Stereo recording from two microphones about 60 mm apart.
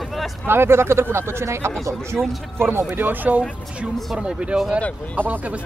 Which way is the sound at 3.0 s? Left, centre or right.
Right.